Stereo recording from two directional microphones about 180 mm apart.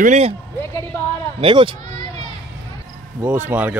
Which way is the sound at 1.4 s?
30° right (ahead or behind).